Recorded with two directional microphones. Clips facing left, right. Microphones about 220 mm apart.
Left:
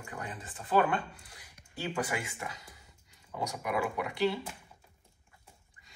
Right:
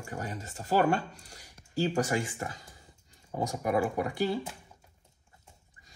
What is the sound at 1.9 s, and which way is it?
Speech, 45° right (ahead or behind).